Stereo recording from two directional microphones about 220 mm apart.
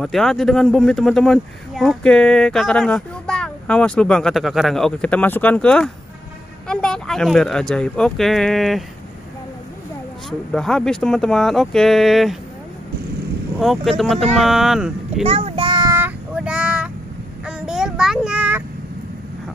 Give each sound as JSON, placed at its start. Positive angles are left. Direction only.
{"t": 0.0, "sound": "speech", "side_deg": 0}
{"t": 10.5, "sound": "speech", "side_deg": 0}
{"t": 13.6, "sound": "speech", "side_deg": 0}
{"t": 15.2, "sound": "child singing", "side_deg": -25}